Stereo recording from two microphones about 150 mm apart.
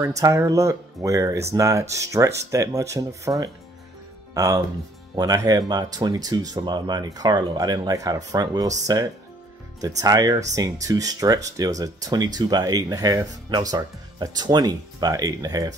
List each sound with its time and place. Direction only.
0.0 s speech: 20° right (ahead or behind)